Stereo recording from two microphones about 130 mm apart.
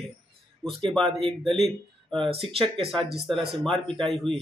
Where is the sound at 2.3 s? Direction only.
45° right (ahead or behind).